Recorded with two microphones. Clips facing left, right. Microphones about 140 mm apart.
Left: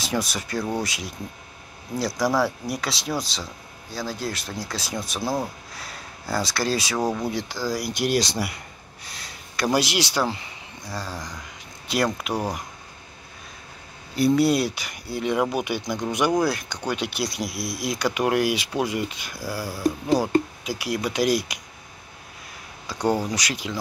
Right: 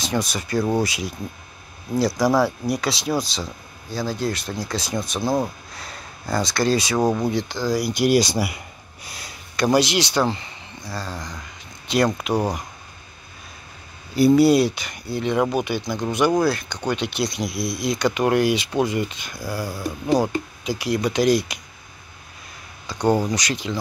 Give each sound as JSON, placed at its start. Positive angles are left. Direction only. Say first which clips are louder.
{"t": 0.0, "sound": "speech", "louder": "right 2 dB", "side_deg": 5}
{"t": 7.0, "sound": "speech", "louder": "right 4 dB", "side_deg": -20}
{"t": 7.2, "sound": "speech", "louder": "right 4 dB", "side_deg": 5}
{"t": 9.0, "sound": "a sound", "louder": "right 3 dB", "side_deg": -5}
{"t": 9.8, "sound": "speech", "louder": "right 3 dB", "side_deg": 5}
{"t": 14.1, "sound": "speech", "louder": "right 5 dB", "side_deg": -5}
{"t": 22.8, "sound": "speech", "louder": "right 3 dB", "side_deg": 5}